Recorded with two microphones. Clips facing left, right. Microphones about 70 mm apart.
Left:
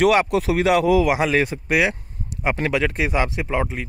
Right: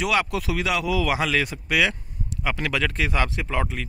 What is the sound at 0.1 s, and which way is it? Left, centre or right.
Speech, left.